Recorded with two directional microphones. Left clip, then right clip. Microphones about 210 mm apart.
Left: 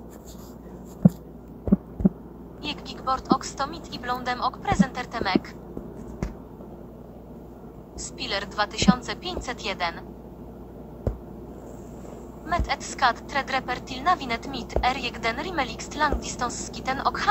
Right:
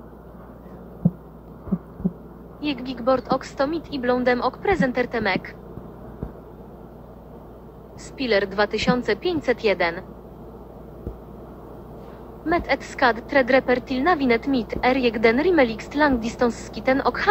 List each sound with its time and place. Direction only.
2.7 s speech: centre (ahead or behind)
8.0 s speech: 5° right (ahead or behind)
12.4 s speech: centre (ahead or behind)